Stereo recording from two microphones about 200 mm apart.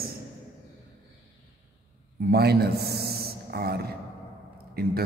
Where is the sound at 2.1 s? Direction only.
50° right (ahead or behind).